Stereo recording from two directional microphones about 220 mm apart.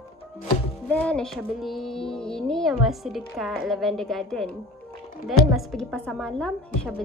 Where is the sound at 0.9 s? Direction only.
5° left (ahead or behind).